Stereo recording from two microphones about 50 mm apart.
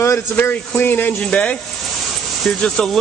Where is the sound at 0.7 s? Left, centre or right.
Left.